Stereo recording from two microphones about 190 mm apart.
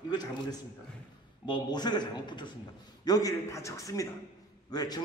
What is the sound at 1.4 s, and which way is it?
A man's voice, 20° left (ahead or behind).